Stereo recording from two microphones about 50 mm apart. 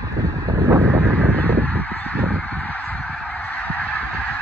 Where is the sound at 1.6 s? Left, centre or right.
Left.